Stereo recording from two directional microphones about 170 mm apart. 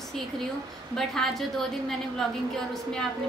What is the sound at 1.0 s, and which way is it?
Speech, centre (ahead or behind).